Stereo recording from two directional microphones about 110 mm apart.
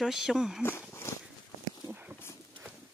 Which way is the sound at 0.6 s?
20° left (ahead or behind).